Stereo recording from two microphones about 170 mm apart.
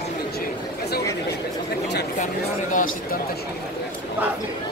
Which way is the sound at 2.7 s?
55° left (ahead or behind).